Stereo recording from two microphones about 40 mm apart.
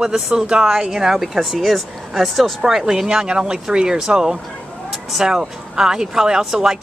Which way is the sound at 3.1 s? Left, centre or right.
Right.